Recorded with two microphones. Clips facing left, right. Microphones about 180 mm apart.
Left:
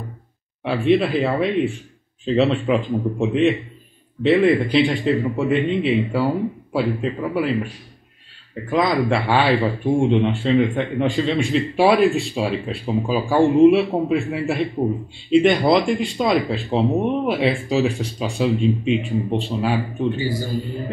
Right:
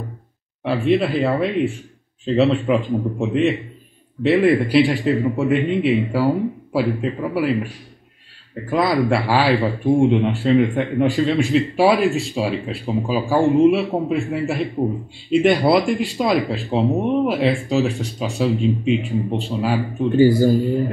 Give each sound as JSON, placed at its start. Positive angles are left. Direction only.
{"t": 0.7, "sound": "speech", "side_deg": 0}
{"t": 8.6, "sound": "speech", "side_deg": -5}
{"t": 20.2, "sound": "speech", "side_deg": -40}